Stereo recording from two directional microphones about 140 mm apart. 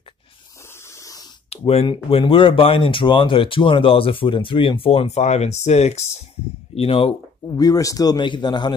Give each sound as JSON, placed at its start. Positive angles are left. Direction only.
{"t": 0.8, "sound": "spray", "side_deg": 20}
{"t": 1.5, "sound": "speech", "side_deg": 45}
{"t": 7.4, "sound": "speech", "side_deg": 25}